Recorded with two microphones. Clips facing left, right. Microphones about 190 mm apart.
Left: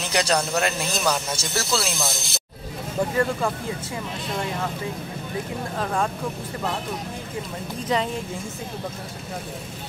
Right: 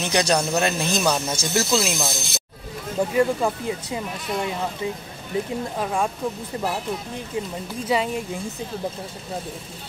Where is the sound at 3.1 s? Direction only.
15° right (ahead or behind).